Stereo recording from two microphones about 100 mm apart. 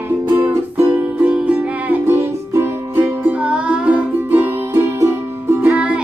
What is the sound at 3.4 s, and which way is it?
Music, 10° right (ahead or behind).